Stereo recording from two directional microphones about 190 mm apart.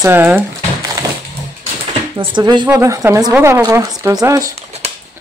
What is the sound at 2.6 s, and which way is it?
A woman's voice, 10° right (ahead or behind).